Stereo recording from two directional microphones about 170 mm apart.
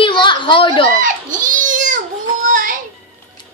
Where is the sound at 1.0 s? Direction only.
50° right (ahead or behind).